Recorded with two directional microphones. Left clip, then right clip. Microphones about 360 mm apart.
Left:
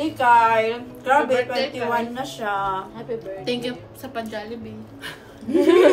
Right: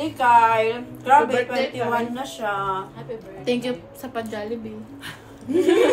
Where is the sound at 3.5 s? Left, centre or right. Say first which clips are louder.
Right 4 dB; centre.